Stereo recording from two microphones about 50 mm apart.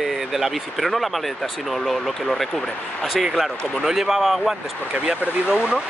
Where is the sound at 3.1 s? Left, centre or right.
Centre.